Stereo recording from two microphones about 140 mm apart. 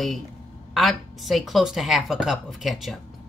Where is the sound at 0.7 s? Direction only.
Centre (ahead or behind).